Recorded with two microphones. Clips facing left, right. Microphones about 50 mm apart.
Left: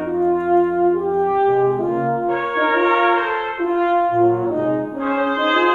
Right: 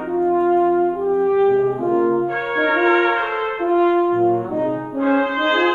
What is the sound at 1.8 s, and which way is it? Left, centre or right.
Brass instrument, centre.